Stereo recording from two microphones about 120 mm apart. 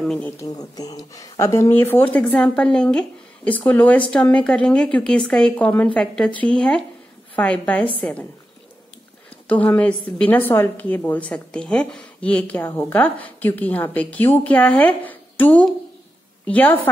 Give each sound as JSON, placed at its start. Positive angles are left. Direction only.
{"t": 0.0, "sound": "speech", "side_deg": 5}
{"t": 0.4, "sound": "a woman's voice", "side_deg": 30}
{"t": 9.5, "sound": "a woman's voice", "side_deg": 15}